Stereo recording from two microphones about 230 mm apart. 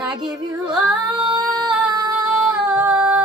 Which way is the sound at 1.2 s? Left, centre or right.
Centre.